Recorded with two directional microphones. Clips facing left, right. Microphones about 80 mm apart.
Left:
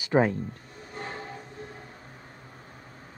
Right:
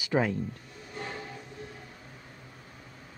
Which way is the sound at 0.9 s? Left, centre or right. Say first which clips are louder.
Left 1 dB; left.